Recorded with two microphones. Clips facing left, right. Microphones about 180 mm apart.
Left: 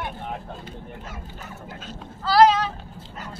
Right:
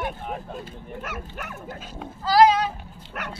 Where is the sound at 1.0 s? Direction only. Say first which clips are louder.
Right 4 dB; 75° right (ahead or behind).